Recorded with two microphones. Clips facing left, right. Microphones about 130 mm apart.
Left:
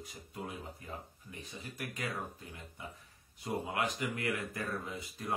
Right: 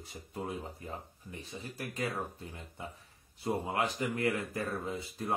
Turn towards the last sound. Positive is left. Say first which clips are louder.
# right 5 dB
turn(degrees=-30)  # may be behind; listen again after turning